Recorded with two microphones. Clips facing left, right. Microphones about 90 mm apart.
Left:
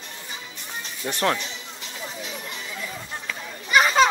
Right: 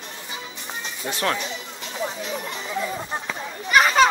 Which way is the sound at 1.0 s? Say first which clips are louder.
Even; 25° right (ahead or behind).